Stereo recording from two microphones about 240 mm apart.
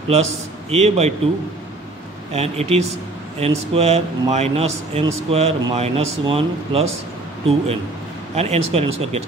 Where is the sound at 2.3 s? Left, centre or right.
Right.